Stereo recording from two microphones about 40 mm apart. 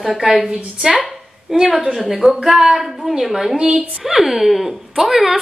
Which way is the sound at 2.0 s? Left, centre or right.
Centre.